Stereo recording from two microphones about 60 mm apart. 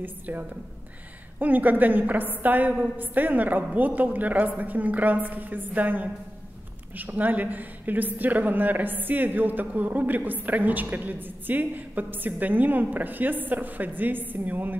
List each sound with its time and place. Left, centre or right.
0.0 s a woman's voice: right